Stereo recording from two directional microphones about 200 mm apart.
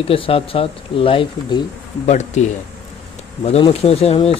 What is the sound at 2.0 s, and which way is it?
Speech, 35° left (ahead or behind).